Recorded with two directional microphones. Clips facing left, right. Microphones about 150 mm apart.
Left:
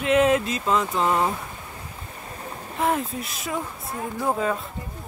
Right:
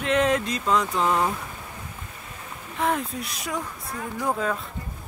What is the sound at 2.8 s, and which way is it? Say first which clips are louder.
Speech: left 1 dB; centre (ahead or behind).